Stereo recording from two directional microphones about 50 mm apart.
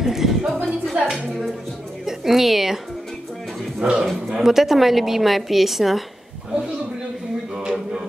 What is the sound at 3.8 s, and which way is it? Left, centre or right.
Speech, right.